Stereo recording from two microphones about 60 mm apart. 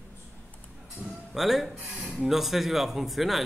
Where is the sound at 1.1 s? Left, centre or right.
Centre.